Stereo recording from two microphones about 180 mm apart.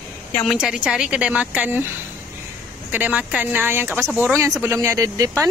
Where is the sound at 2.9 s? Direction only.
10° right (ahead or behind).